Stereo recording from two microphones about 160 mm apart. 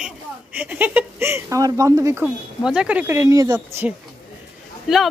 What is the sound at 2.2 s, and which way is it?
Speech, 5° right (ahead or behind).